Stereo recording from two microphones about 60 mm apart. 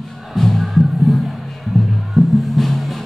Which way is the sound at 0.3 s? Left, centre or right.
Centre.